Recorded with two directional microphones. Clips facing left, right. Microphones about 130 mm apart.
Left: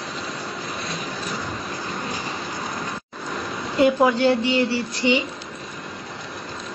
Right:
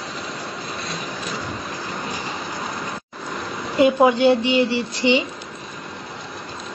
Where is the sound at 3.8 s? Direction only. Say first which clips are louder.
Right 2 dB; 20° right (ahead or behind).